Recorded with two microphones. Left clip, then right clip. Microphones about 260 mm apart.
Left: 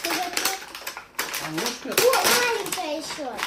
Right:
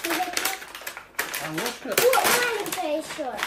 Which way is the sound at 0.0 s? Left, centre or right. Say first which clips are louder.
Left 1 dB; centre.